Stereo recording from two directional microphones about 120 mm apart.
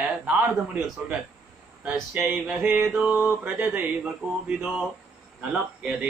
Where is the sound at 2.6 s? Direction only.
20° right (ahead or behind).